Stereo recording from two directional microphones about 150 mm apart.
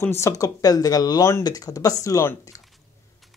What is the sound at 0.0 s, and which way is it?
Speech, 15° left (ahead or behind).